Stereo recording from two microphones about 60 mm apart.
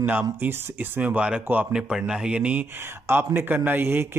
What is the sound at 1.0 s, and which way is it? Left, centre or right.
Speech, right.